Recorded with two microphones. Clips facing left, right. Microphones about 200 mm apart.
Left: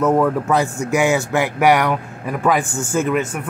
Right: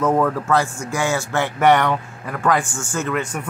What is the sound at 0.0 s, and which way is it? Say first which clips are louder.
Speech: left 2 dB; 5° left (ahead or behind).